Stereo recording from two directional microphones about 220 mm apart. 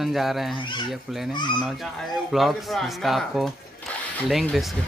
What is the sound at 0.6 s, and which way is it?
Speech, 20° left (ahead or behind).